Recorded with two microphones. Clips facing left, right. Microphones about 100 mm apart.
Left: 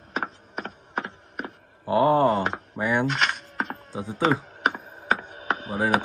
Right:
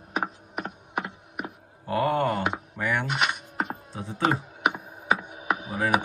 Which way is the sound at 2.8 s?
20° left (ahead or behind).